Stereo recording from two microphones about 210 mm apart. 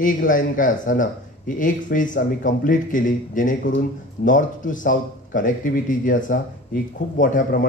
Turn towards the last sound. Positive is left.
turn(degrees=40)  # may be behind; listen again after turning